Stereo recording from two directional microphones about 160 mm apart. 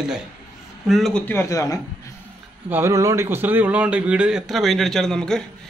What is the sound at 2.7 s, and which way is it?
Speech, 15° right (ahead or behind).